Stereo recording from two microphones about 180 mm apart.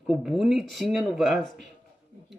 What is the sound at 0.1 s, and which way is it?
Speech, centre (ahead or behind).